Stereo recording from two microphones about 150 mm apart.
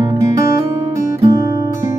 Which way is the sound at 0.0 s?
25° right (ahead or behind).